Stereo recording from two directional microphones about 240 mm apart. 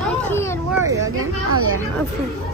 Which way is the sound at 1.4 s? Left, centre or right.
Right.